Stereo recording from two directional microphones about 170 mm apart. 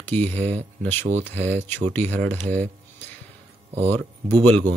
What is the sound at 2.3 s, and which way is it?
Speech, 45° right (ahead or behind).